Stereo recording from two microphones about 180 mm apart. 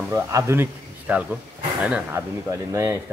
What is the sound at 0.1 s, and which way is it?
Speech, 15° right (ahead or behind).